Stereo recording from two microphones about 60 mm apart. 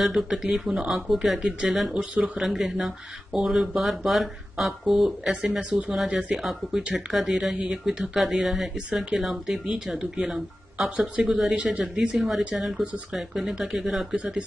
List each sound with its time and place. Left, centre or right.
0.0 s speech: centre
6.3 s speech: centre
12.2 s speech: centre